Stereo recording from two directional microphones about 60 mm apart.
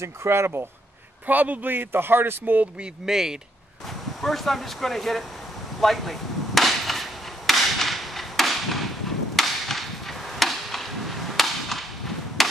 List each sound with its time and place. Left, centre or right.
0.0 s speech: right
1.2 s speech: right
3.1 s speech: centre
5.8 s a sound: centre